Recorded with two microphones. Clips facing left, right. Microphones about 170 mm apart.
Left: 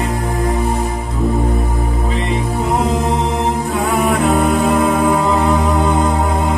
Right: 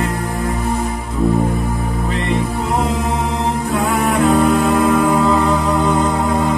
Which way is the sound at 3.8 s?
Centre (ahead or behind).